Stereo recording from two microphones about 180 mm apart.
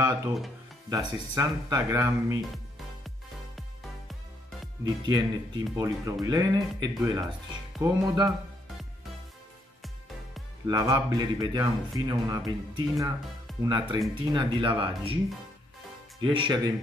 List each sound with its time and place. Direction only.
0.8 s speech: 20° right (ahead or behind)
4.8 s speech: 25° right (ahead or behind)
10.7 s speech: 20° right (ahead or behind)
16.2 s speech: 25° right (ahead or behind)